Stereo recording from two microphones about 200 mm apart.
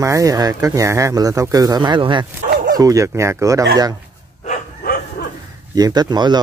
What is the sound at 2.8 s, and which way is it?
Speech, 15° right (ahead or behind).